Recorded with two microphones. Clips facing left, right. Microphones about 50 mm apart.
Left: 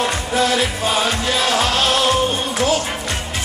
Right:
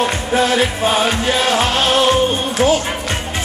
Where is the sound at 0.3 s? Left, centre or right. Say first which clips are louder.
Right 3 dB; right.